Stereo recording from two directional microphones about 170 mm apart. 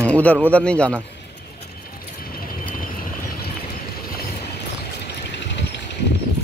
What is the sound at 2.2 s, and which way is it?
Vehicle, 60° left (ahead or behind).